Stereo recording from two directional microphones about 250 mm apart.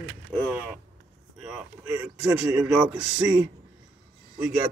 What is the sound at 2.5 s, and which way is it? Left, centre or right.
Speech, centre.